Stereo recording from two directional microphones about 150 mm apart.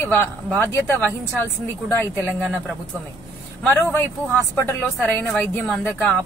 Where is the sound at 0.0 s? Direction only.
10° left (ahead or behind).